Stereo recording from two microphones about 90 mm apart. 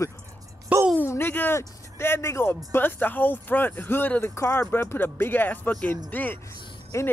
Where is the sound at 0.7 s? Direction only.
20° right (ahead or behind).